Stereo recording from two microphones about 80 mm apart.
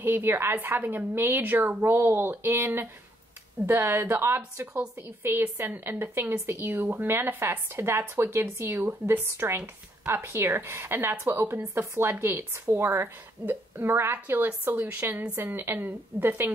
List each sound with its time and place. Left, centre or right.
0.0 s a woman's voice: right